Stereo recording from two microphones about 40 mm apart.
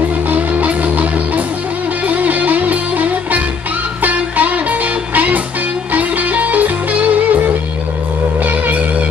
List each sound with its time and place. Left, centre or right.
0.3 s music: right
8.5 s music: right